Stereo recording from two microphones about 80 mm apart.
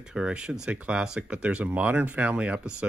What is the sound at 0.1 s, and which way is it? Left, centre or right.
Speech, centre.